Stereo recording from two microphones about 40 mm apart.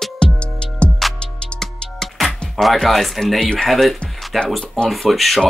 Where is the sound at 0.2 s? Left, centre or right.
Left.